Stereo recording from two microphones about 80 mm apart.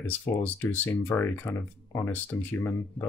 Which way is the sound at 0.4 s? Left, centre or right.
Left.